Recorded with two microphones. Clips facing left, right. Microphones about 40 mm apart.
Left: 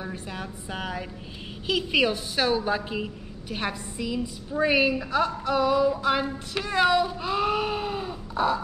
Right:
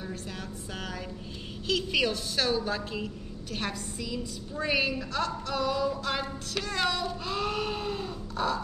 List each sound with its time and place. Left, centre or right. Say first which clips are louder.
0.0 s a woman's voice: left 4 dB; centre